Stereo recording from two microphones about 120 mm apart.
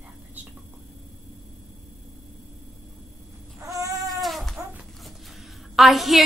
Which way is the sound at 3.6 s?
30° right (ahead or behind).